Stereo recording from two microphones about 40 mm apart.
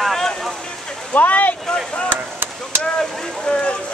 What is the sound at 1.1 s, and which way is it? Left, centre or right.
Speech, left.